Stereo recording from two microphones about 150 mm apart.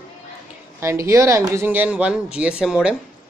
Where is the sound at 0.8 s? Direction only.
20° right (ahead or behind).